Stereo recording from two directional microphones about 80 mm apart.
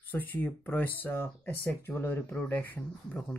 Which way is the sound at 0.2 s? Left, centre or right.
Left.